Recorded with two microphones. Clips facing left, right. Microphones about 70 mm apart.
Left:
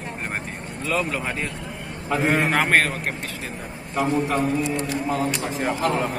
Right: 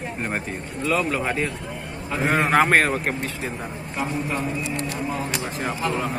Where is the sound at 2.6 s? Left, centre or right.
Centre.